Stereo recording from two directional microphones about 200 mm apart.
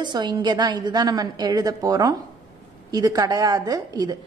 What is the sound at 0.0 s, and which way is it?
A woman's voice, 20° right (ahead or behind).